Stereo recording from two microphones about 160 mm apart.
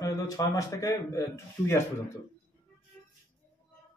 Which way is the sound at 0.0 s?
20° left (ahead or behind).